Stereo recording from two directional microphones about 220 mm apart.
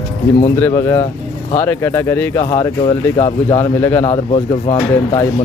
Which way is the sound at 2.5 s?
25° left (ahead or behind).